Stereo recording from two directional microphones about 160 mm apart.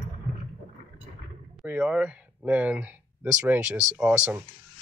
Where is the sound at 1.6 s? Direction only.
10° right (ahead or behind).